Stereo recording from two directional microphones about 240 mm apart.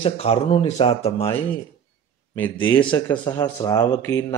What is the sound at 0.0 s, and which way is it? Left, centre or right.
Speech, left.